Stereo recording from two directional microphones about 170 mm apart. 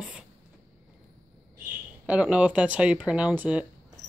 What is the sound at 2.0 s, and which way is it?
Speech, 5° right (ahead or behind).